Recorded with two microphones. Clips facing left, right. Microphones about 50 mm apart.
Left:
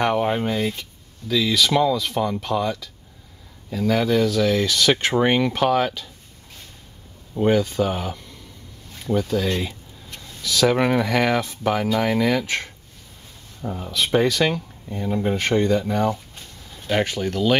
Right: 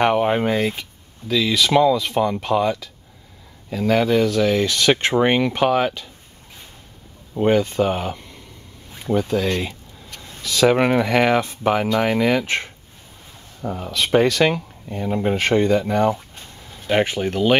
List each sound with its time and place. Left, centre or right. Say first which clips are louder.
0.0 s speech: right 3 dB; right
7.3 s speech: right 2 dB; right
10.2 s a sound: right 3 dB; right
10.8 s speech: right 2 dB; centre
11.9 s speech: right 2 dB; centre
12.2 s speech: right 2 dB; right
13.6 s speech: right 3 dB; centre
14.4 s speech: right 3 dB; right